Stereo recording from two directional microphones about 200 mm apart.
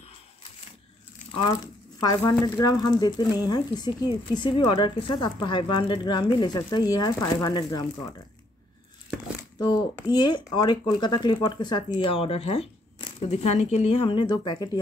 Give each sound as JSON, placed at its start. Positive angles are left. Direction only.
{"t": 1.3, "sound": "speech", "side_deg": 20}
{"t": 9.6, "sound": "speech", "side_deg": 20}